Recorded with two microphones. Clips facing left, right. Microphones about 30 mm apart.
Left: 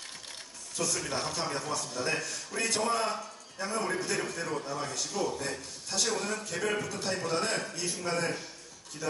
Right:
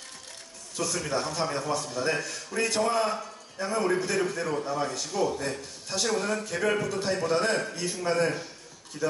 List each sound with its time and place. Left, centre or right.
0.7 s a man's voice: centre